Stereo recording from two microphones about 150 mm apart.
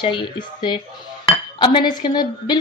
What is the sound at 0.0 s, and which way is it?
A woman's voice, 30° left (ahead or behind).